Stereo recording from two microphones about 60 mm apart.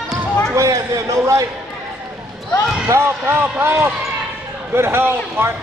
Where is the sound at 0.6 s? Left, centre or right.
Right.